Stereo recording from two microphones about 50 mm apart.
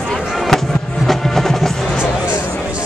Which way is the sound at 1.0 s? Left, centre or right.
Centre.